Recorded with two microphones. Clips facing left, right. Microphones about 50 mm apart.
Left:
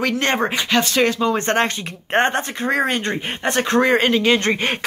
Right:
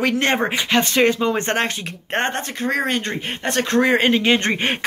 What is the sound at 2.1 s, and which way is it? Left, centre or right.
Speech, centre.